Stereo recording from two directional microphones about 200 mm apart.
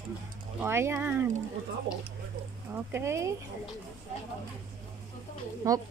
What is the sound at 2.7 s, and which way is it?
Speech, 10° right (ahead or behind).